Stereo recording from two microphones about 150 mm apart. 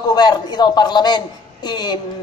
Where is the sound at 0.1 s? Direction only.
25° left (ahead or behind).